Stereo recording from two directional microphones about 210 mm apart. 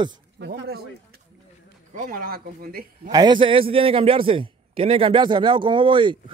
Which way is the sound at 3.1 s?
20° right (ahead or behind).